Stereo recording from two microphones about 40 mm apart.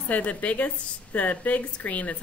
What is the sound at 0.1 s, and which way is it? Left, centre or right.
A woman's voice, left.